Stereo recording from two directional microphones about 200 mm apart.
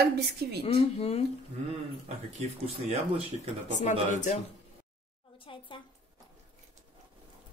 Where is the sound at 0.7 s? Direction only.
30° left (ahead or behind).